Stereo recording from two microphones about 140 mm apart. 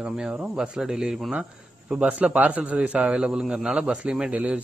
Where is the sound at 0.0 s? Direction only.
5° right (ahead or behind).